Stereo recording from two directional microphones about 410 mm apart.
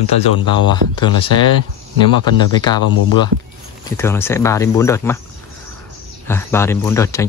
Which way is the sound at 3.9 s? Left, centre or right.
Centre.